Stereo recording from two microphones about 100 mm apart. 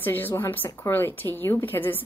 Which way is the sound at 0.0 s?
20° left (ahead or behind).